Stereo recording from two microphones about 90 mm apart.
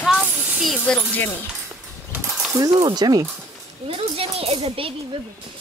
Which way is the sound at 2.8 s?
50° right (ahead or behind).